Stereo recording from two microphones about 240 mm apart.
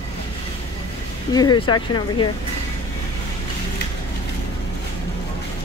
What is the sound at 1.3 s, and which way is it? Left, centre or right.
Speech, centre.